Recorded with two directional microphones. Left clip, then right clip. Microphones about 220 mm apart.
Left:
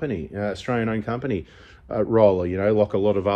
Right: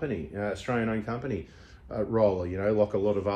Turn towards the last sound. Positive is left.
turn(degrees=25)  # may be behind; listen again after turning